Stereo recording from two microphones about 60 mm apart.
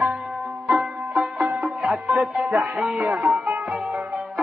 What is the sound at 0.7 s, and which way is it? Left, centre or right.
Music, centre.